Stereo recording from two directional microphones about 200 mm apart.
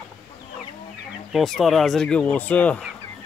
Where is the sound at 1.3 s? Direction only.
Centre (ahead or behind).